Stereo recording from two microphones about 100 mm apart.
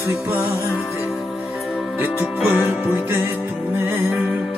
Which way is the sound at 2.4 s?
20° right (ahead or behind).